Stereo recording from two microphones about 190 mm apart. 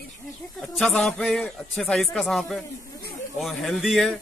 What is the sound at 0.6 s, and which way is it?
Speech, centre (ahead or behind).